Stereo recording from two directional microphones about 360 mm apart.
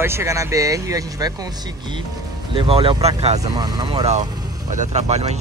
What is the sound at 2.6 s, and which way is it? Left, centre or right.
Speech, centre.